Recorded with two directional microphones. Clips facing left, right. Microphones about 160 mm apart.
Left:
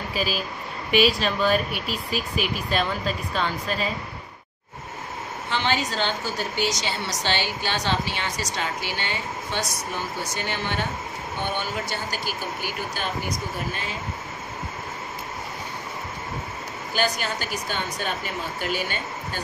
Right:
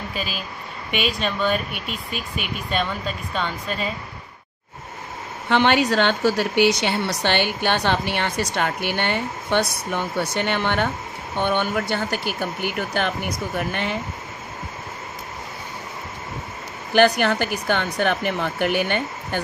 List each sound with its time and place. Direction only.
0.1 s speech: 5° left (ahead or behind)
5.5 s a woman's voice: 60° right (ahead or behind)
16.9 s a woman's voice: 65° right (ahead or behind)